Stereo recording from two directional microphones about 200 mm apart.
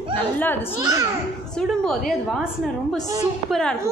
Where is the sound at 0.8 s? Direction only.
20° right (ahead or behind).